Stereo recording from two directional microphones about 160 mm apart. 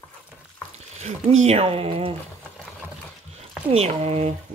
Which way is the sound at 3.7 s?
40° right (ahead or behind).